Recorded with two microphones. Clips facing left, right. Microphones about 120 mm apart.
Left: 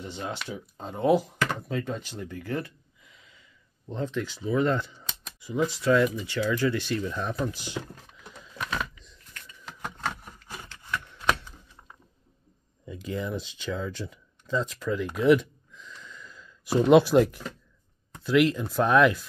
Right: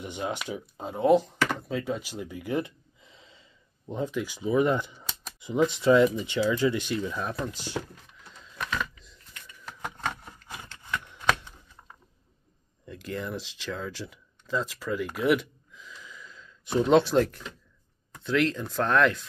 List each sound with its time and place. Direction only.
0.0 s speech: 15° right (ahead or behind)
3.0 s gasp: 30° right (ahead or behind)
3.8 s speech: 10° right (ahead or behind)
7.1 s speech: 5° right (ahead or behind)
9.3 s a sound: 10° right (ahead or behind)
10.0 s a sound: 5° left (ahead or behind)
11.1 s shuffling cards: 15° right (ahead or behind)
12.8 s speech: centre (ahead or behind)